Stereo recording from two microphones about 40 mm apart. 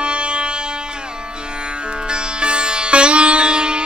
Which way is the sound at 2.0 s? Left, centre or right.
Right.